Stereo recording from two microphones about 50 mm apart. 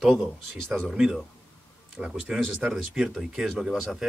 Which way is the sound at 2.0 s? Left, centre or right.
Centre.